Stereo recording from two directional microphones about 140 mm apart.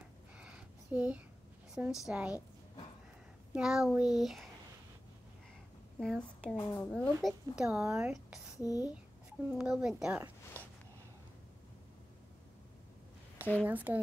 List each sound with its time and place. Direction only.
0.4 s a sound: 10° right (ahead or behind)
2.0 s speech: 10° right (ahead or behind)
3.5 s speech: 5° right (ahead or behind)
5.9 s a woman's voice: 5° left (ahead or behind)
6.5 s a woman's voice: 25° left (ahead or behind)
6.9 s speech: 5° left (ahead or behind)
8.5 s a woman's voice: 25° left (ahead or behind)
9.5 s speech: 5° right (ahead or behind)
13.4 s a sound: 10° left (ahead or behind)
13.7 s speech: 10° right (ahead or behind)